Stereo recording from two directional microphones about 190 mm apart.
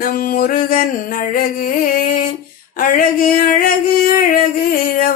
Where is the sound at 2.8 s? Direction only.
45° left (ahead or behind).